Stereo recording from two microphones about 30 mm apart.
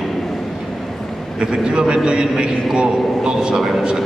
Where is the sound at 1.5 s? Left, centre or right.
Right.